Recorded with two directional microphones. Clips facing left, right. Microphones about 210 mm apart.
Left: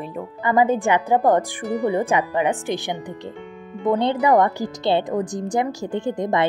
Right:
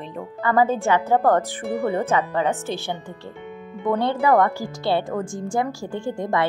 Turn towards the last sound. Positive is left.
turn(degrees=20)  # may be behind; listen again after turning